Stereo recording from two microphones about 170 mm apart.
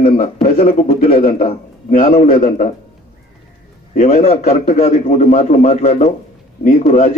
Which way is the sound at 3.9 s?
40° left (ahead or behind).